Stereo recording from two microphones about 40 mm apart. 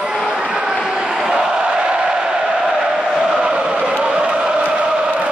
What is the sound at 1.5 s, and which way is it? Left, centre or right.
Crowd, right.